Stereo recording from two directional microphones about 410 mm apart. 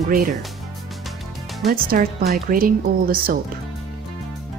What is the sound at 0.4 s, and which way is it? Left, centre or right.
Music, centre.